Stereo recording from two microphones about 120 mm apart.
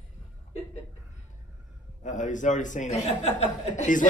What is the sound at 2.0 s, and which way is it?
Speech, 90° left.